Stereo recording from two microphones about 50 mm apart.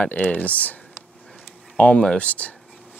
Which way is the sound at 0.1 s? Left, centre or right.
Left.